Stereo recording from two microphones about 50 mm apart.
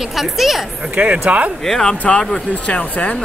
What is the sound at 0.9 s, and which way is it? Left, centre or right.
Speech, right.